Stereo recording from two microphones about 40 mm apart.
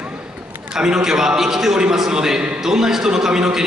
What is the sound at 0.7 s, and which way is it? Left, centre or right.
A man's voice, centre.